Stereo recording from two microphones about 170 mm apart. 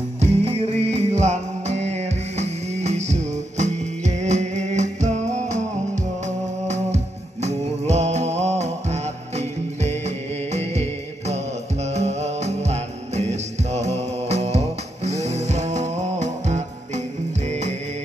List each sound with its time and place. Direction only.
0.2 s music: 40° right (ahead or behind)